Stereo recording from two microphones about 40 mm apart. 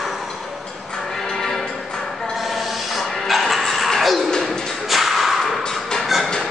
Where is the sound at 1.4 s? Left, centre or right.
Centre.